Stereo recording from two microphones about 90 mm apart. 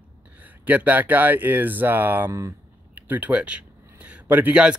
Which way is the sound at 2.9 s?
15° right (ahead or behind).